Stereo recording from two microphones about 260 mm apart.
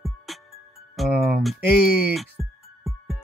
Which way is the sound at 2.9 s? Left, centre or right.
Centre.